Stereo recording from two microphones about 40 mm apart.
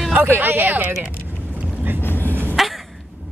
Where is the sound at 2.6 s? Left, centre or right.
Centre.